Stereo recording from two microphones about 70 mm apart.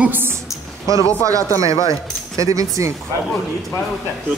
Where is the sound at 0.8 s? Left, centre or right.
Right.